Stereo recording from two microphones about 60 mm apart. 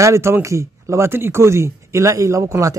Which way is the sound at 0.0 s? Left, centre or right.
Right.